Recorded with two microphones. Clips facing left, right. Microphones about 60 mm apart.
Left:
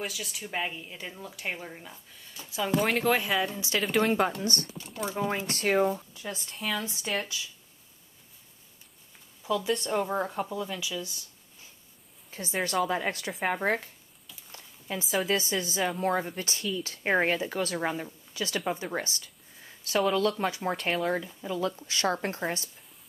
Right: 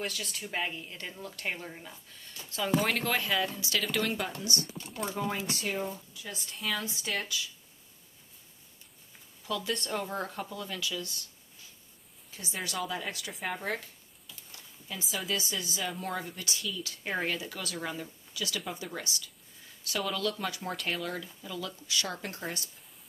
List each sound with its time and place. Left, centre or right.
0.0 s speech: centre
3.1 s speech: centre; by 4.3 s left
4.4 s a woman's voice: left
4.7 s speech: centre
5.2 s speech: centre
5.5 s a woman's voice: left
6.5 s speech: centre
6.8 s speech: left
9.4 s speech: centre
12.3 s a woman's voice: left
12.5 s a woman's voice: left
14.5 s a sound: left
15.2 s a woman's voice: left
16.2 s speech: left